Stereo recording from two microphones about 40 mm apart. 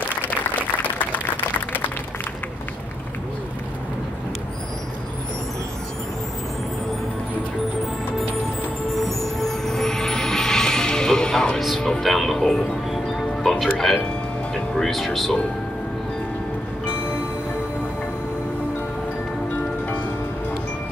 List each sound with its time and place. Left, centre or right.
9.4 s music: centre
12.0 s music: centre
14.0 s music: left
14.8 s speech: centre